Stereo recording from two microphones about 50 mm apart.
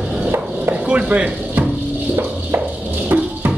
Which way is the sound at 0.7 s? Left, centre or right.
Right.